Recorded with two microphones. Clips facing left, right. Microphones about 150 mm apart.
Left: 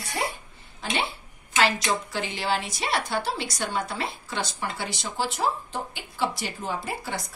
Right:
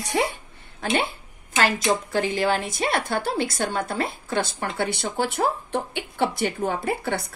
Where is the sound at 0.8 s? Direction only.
45° right (ahead or behind).